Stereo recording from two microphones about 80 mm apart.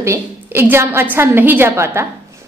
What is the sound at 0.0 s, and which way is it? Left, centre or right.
A woman's voice, right.